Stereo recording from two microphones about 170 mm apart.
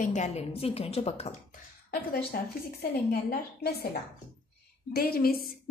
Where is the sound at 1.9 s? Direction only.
65° left (ahead or behind).